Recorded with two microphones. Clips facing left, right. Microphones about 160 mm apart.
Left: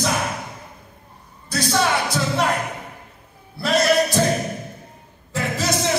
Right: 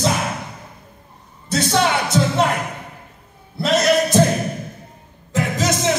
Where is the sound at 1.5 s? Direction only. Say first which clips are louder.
Right 2 dB; 20° right (ahead or behind).